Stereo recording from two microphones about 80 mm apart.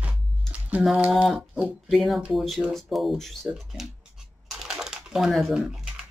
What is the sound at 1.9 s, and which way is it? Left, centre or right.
Speech, centre.